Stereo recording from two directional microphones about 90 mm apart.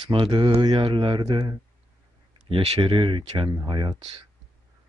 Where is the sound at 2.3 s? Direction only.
85° right; by 3.5 s 70° right (ahead or behind).